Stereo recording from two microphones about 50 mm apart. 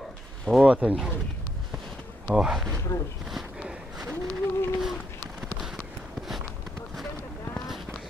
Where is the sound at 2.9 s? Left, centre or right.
Left.